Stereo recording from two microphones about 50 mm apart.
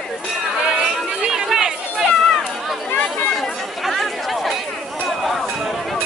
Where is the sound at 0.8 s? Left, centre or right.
Centre.